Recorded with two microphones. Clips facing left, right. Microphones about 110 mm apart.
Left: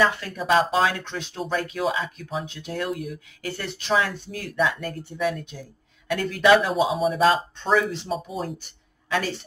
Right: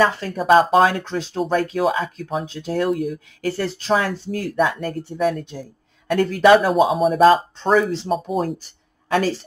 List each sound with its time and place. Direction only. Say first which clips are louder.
0.0 s speech: right 4 dB; 35° right (ahead or behind)
7.0 s speech: right 6 dB; centre (ahead or behind)
7.2 s speech: right 7 dB; 40° right (ahead or behind)
8.1 s speech: right 7 dB; 50° right (ahead or behind)
9.1 s speech: right 6 dB; 40° right (ahead or behind)